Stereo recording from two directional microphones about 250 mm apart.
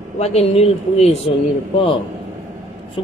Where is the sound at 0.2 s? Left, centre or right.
Left.